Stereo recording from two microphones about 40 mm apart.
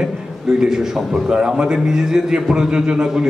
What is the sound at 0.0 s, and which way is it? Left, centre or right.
A man's voice, centre.